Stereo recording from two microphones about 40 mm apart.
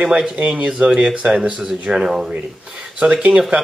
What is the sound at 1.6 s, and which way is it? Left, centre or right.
Speech, centre.